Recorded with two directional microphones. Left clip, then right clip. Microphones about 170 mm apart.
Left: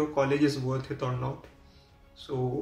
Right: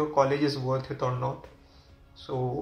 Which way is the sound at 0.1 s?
40° left (ahead or behind).